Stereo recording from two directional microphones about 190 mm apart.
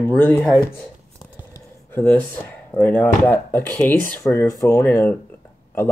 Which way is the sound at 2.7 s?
5° left (ahead or behind).